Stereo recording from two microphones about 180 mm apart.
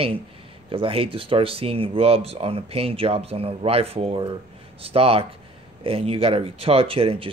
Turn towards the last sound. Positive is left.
turn(degrees=-30)  # may be behind; listen again after turning